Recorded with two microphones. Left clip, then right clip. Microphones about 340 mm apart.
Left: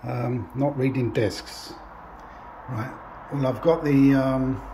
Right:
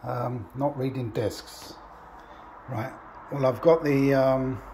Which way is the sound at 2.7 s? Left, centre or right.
Centre.